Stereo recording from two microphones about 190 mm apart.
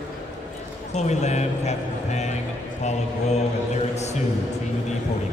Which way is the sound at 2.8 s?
35° left (ahead or behind).